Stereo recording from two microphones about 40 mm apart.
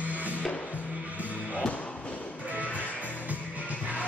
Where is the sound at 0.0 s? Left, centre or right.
Right.